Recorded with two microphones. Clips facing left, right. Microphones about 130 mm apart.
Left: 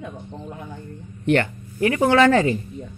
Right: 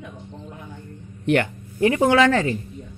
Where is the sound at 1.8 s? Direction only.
20° right (ahead or behind).